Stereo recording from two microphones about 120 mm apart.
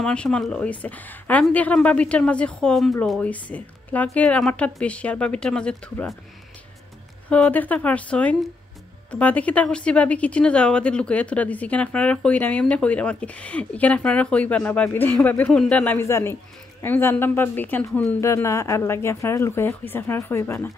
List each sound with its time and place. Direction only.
0.0 s a woman's voice: 10° left (ahead or behind)
7.2 s a woman's voice: 10° left (ahead or behind)